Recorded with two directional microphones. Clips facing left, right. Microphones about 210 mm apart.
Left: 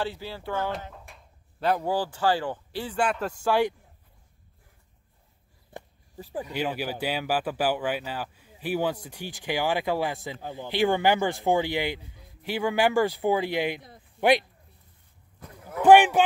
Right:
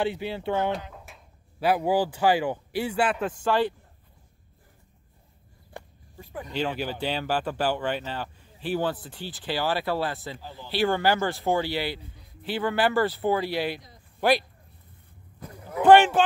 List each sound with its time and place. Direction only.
0.0 s speech: 20° right (ahead or behind)
0.7 s speech: centre (ahead or behind)
3.4 s speech: 10° left (ahead or behind)
6.4 s speech: 10° left (ahead or behind)
15.4 s speech: centre (ahead or behind)